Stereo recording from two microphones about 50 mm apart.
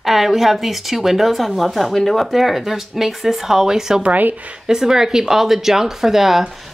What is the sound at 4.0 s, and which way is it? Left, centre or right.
Speech, right.